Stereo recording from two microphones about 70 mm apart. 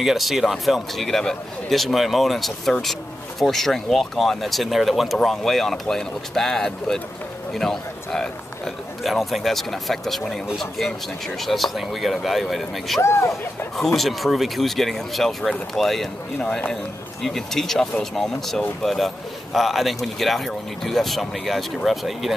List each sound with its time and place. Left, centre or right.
0.0 s a man's voice: centre
13.0 s speech: left
13.9 s a man's voice: centre